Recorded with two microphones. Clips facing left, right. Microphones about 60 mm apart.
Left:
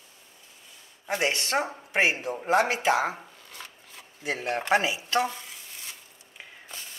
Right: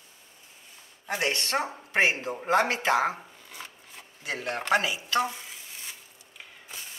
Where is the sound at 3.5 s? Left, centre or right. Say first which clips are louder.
Right 2 dB; centre.